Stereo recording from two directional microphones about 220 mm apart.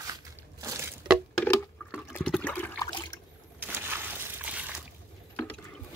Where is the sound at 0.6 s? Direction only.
15° right (ahead or behind).